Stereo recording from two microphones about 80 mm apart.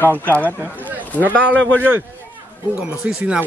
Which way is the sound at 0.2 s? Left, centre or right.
Left.